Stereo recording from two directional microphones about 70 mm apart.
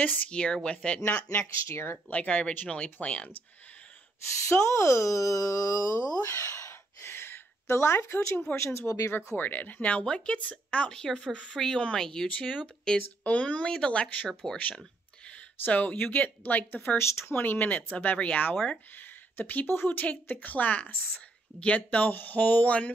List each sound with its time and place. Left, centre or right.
0.0 s speech: centre
1.4 s speech: left
2.0 s a woman's voice: centre
4.5 s speech: left
6.3 s a sound: left
8.5 s speech: left
9.4 s a woman's voice: left
14.4 s speech: centre
15.2 s speech: centre
16.9 s a woman's voice: left